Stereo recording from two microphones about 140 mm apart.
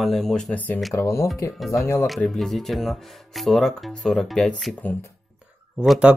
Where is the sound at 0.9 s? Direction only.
20° left (ahead or behind).